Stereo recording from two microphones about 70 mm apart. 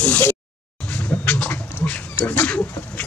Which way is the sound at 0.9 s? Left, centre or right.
Left.